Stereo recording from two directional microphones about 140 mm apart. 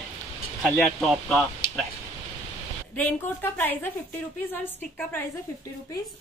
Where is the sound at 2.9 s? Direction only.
15° left (ahead or behind).